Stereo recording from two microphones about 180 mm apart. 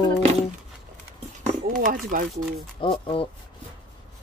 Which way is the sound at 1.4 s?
40° right (ahead or behind).